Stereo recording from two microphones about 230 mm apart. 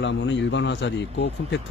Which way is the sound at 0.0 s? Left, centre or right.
Left.